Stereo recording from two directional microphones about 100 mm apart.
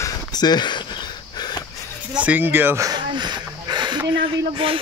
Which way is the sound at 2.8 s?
45° right (ahead or behind).